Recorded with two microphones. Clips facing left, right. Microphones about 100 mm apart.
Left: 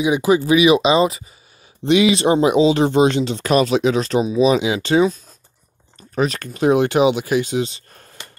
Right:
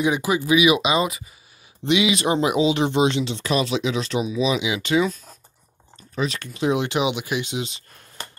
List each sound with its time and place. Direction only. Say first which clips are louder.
0.2 s speech: left 5 dB; 30° left (ahead or behind)
1.9 s speech: left 5 dB; 40° left (ahead or behind)
5.9 s speech: left 6 dB; 45° left (ahead or behind)